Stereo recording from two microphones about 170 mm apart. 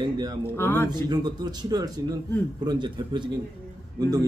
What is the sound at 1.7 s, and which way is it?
A man's voice, 20° right (ahead or behind).